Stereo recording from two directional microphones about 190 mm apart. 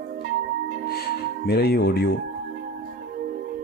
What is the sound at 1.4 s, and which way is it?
Speech, 55° left (ahead or behind).